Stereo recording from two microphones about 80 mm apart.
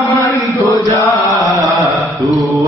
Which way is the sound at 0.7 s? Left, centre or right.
Left.